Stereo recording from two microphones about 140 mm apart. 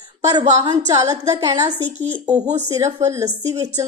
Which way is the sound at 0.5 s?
30° right (ahead or behind).